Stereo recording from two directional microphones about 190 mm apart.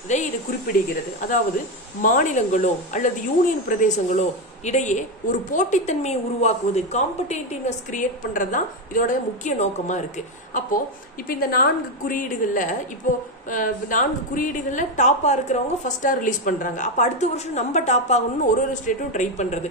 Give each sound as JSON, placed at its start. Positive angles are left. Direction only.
{"t": 0.1, "sound": "speech", "side_deg": 35}
{"t": 2.0, "sound": "speech", "side_deg": 45}
{"t": 11.2, "sound": "a woman's voice", "side_deg": 50}